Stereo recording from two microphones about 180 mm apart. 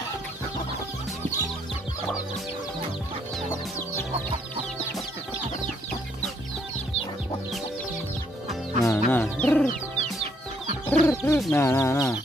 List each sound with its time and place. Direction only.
8.8 s music: 10° left (ahead or behind)
10.9 s chicken: 15° left (ahead or behind)
11.5 s speech: 15° left (ahead or behind)